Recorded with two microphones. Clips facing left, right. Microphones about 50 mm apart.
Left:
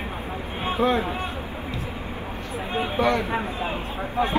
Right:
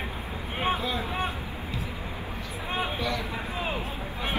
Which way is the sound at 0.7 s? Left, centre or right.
Left.